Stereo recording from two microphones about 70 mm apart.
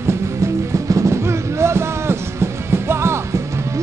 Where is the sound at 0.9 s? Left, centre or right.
Right.